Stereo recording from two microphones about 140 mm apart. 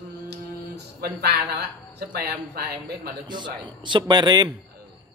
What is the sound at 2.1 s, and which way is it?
Speech, 90° right.